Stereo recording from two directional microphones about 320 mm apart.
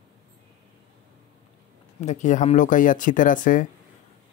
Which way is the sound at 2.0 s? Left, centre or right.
Left.